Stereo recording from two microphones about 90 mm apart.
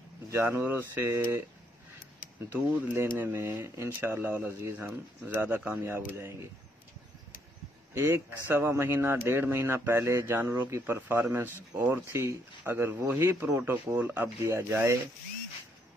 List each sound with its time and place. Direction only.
0.3 s speech: 25° right (ahead or behind)
2.5 s speech: 25° right (ahead or behind)
8.0 s speech: 25° right (ahead or behind)